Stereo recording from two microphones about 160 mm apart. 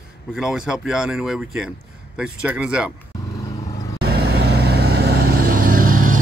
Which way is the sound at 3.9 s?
90° right.